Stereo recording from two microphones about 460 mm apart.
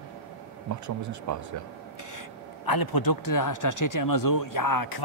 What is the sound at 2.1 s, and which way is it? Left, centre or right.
Speech, left.